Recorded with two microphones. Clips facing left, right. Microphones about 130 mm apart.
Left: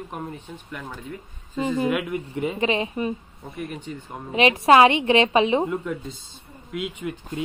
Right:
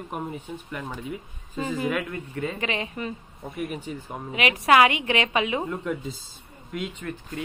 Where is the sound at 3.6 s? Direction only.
5° right (ahead or behind).